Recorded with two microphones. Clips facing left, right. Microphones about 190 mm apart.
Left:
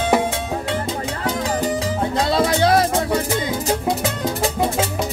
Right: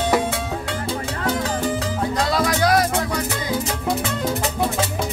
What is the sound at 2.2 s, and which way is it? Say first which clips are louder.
Music: left 3 dB; 25° left (ahead or behind).